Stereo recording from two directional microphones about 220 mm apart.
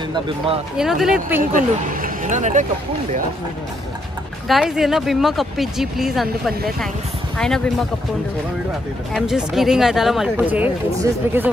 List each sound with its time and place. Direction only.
0.7 s speech: centre (ahead or behind)
1.4 s speech: 35° right (ahead or behind)
4.5 s speech: centre (ahead or behind)
9.1 s speech: centre (ahead or behind)